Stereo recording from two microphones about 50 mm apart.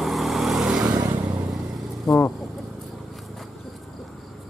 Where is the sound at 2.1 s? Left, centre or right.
Centre.